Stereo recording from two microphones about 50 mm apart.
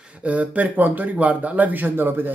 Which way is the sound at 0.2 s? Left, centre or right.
Right.